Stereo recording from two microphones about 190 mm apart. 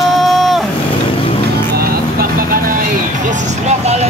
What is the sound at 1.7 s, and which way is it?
Vehicle, 55° right (ahead or behind).